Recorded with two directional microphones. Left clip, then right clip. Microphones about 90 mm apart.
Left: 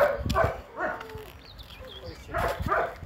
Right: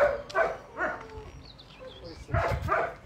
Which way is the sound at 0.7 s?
10° left (ahead or behind).